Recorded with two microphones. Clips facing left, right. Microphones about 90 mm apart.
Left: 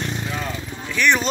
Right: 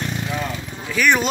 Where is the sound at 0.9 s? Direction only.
5° right (ahead or behind).